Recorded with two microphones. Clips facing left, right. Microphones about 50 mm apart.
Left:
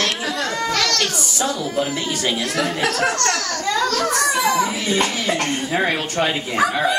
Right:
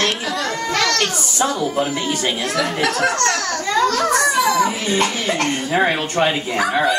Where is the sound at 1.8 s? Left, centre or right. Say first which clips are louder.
Right 2 dB; centre.